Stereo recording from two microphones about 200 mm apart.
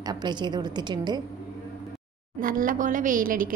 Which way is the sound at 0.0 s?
20° right (ahead or behind).